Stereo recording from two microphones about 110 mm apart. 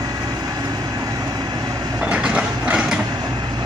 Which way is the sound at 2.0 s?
10° right (ahead or behind).